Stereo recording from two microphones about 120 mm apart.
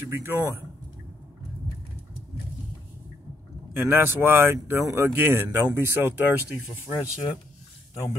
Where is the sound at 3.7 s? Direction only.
20° right (ahead or behind).